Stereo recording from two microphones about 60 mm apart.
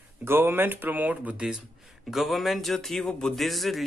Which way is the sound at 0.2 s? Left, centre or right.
Right.